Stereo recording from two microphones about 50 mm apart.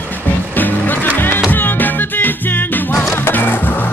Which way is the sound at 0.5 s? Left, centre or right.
Left.